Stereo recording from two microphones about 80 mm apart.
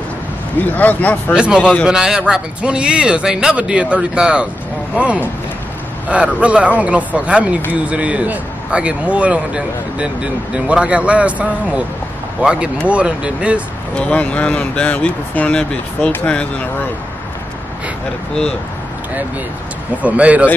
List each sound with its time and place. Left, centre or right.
0.6 s a man's voice: left
1.3 s speech: centre
1.6 s speech: centre
1.9 s speech: centre
13.9 s speech: centre
20.0 s speech: centre